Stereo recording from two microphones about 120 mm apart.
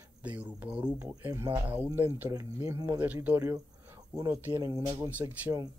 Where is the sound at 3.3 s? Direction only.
25° right (ahead or behind).